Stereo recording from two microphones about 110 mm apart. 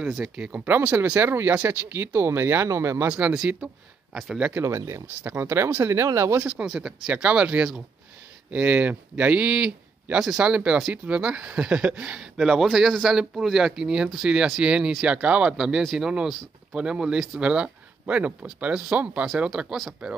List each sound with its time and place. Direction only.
0.0 s speech: 10° right (ahead or behind); by 3.1 s 25° right (ahead or behind)
3.1 s speech: 10° right (ahead or behind)
4.6 s speech: 25° right (ahead or behind)
6.4 s speech: 5° right (ahead or behind)